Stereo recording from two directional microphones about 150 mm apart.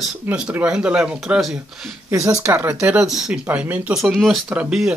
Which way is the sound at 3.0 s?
5° right (ahead or behind).